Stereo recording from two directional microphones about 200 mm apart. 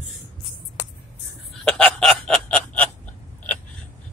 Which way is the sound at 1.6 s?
5° left (ahead or behind).